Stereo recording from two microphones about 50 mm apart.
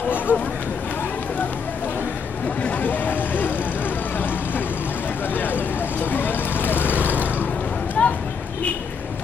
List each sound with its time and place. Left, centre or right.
0.3 s speech: right
2.6 s vehicle: left
5.3 s vehicle: left
8.0 s a sound: left